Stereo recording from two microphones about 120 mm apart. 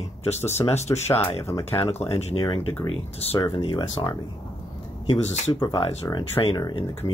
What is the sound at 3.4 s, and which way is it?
Speech, 45° left (ahead or behind).